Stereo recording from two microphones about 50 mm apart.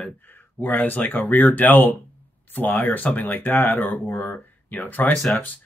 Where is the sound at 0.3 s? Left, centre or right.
Left.